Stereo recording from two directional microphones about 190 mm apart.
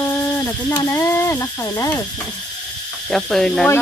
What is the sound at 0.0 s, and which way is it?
Speech, 15° left (ahead or behind).